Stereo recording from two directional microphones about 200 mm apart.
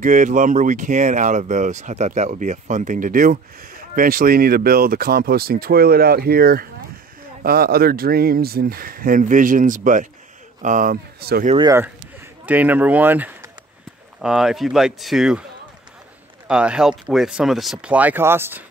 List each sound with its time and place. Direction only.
0.0 s speech: 40° right (ahead or behind)
11.5 s speech: 20° right (ahead or behind)
12.4 s speech: 10° right (ahead or behind)
16.4 s speech: 5° right (ahead or behind)